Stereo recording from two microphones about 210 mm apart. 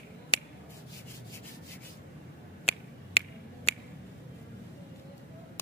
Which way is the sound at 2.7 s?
30° left (ahead or behind).